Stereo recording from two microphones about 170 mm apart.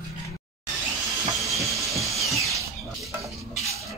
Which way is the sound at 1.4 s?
Centre (ahead or behind).